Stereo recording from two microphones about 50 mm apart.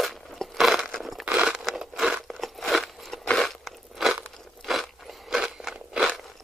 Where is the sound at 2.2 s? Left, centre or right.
Centre.